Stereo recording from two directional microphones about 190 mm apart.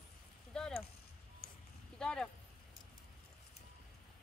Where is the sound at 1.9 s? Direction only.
5° left (ahead or behind).